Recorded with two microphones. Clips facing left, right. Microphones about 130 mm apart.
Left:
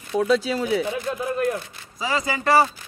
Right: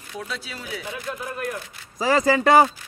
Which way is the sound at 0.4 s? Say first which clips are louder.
Left 12 dB; 35° left (ahead or behind).